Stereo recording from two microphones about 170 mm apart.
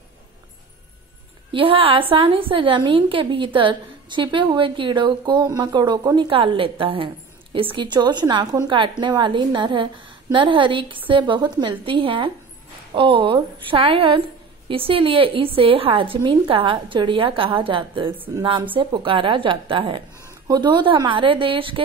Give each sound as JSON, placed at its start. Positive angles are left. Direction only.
{"t": 1.5, "sound": "a woman's voice", "side_deg": -30}